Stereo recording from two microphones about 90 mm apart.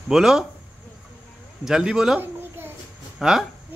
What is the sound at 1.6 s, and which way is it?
Speech, 5° right (ahead or behind).